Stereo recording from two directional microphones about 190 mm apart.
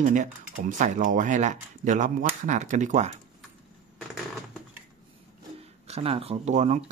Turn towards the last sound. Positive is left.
turn(degrees=-40)  # may be behind; listen again after turning